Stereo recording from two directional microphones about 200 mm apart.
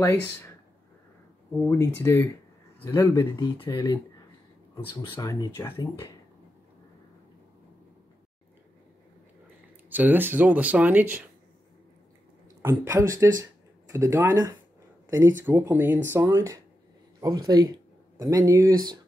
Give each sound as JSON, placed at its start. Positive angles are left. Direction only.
{"t": 0.0, "sound": "speech", "side_deg": 10}
{"t": 1.6, "sound": "speech", "side_deg": 10}
{"t": 5.1, "sound": "speech", "side_deg": 15}
{"t": 9.8, "sound": "speech", "side_deg": -10}
{"t": 12.6, "sound": "speech", "side_deg": -15}